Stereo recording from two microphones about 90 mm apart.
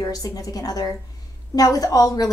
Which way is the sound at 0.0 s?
45° left (ahead or behind).